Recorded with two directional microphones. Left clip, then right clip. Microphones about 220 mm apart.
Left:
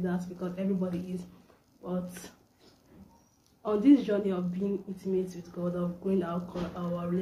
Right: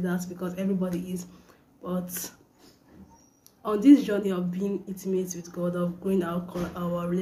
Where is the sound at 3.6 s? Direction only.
5° right (ahead or behind).